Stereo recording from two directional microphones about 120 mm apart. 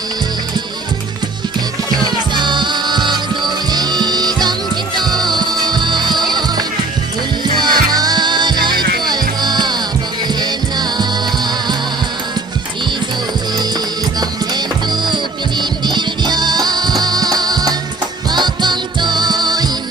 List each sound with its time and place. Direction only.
2.0 s music: 35° right (ahead or behind)
14.5 s music: 40° right (ahead or behind)